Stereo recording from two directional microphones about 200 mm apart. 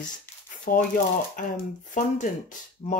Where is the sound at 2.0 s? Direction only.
40° left (ahead or behind).